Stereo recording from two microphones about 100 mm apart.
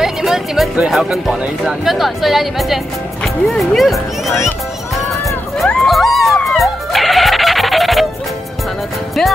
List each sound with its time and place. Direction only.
0.0 s speech: 5° right (ahead or behind)
4.3 s speech: 25° left (ahead or behind)
5.6 s crowd: centre (ahead or behind)
6.4 s music: centre (ahead or behind)